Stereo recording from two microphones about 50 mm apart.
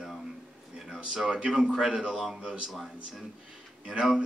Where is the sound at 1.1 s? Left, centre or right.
Centre.